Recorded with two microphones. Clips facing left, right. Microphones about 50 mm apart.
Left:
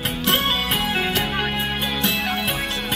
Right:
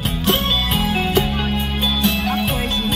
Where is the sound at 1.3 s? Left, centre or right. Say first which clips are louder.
Right 1 dB; left.